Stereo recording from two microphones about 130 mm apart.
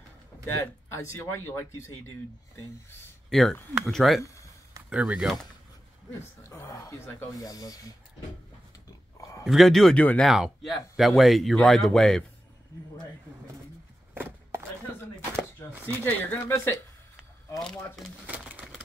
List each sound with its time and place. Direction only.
0.8 s speech: 20° left (ahead or behind)
3.3 s speech: 5° left (ahead or behind)
6.5 s speech: 20° left (ahead or behind)
9.4 s speech: centre (ahead or behind)
10.2 s speech: centre (ahead or behind)
14.1 s chopping: 20° right (ahead or behind)
15.6 s chopping: 20° left (ahead or behind)
16.0 s speech: 15° left (ahead or behind)
17.6 s speech: 5° left (ahead or behind)
18.2 s sewing machine: 10° right (ahead or behind)